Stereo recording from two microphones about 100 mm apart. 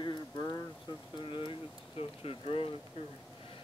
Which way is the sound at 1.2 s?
60° left (ahead or behind).